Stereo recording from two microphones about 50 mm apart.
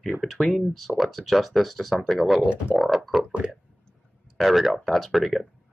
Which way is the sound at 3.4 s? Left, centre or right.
Right.